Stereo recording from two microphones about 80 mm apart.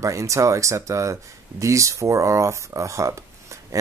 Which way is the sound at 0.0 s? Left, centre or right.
Right.